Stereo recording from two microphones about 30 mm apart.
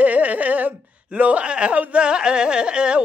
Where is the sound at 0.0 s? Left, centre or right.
Right.